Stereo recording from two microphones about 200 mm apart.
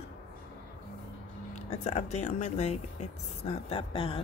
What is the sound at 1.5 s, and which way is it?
Speech, 35° left (ahead or behind).